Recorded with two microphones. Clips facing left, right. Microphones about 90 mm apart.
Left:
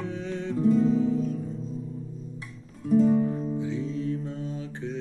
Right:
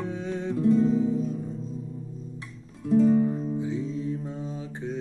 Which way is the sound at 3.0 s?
20° right (ahead or behind).